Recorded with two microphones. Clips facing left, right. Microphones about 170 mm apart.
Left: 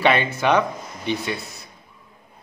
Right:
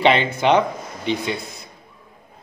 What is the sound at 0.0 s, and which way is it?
Speech, 20° right (ahead or behind).